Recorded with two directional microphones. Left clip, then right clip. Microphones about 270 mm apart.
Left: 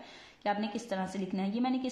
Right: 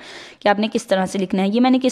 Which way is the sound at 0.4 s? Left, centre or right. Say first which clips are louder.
Right 15 dB; right.